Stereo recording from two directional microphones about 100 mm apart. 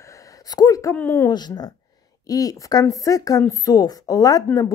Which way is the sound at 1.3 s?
45° left (ahead or behind).